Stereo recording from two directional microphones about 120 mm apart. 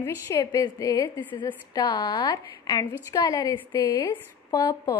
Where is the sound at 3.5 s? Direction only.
25° left (ahead or behind).